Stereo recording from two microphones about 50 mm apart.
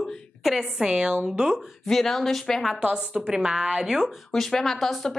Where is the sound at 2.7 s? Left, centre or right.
Centre.